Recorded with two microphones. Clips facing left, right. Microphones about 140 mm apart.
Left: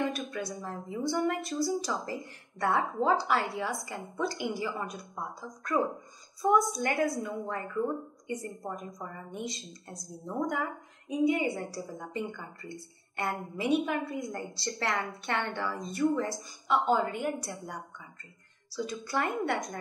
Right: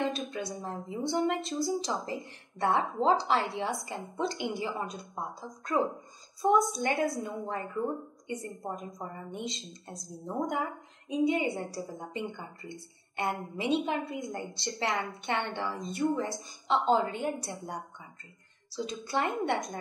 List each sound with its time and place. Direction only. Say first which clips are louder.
0.0 s a woman's voice: even; 25° right (ahead or behind)
18.7 s a woman's voice: even; 25° right (ahead or behind)